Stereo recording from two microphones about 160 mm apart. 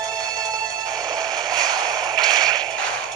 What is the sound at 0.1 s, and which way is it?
Music, 25° right (ahead or behind).